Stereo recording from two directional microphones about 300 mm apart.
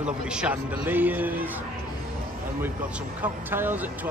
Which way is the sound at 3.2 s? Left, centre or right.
Centre.